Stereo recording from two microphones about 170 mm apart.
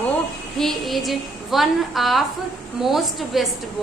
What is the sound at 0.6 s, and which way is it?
A woman's voice, centre (ahead or behind).